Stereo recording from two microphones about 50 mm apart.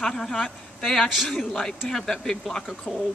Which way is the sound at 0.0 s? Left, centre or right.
Centre.